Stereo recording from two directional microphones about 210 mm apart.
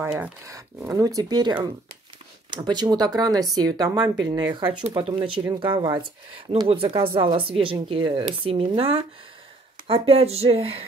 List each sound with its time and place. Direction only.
0.0 s speech: 10° right (ahead or behind); by 10.9 s 25° right (ahead or behind)